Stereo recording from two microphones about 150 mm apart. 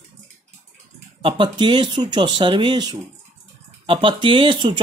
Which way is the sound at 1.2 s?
35° right (ahead or behind).